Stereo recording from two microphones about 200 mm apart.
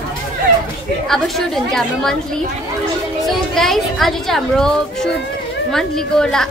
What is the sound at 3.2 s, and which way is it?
Speech, centre (ahead or behind).